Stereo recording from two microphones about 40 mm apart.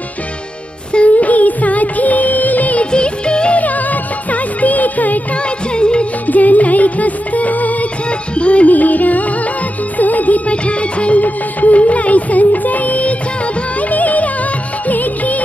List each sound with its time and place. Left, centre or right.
0.9 s music: left
2.8 s music: left
3.5 s music: left
5.8 s music: left
6.2 s music: left